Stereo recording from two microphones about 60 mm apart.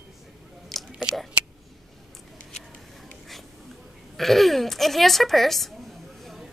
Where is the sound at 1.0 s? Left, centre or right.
Centre.